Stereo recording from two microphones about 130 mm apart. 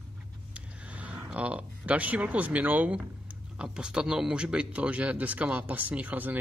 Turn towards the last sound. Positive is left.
turn(degrees=-15)  # may be behind; listen again after turning